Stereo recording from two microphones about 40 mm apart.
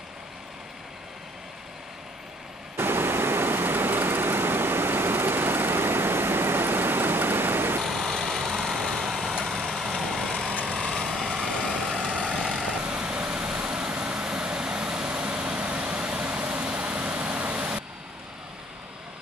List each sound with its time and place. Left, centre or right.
2.8 s vehicle: right
7.8 s vehicle: centre
11.4 s vehicle: centre
12.0 s vehicle: right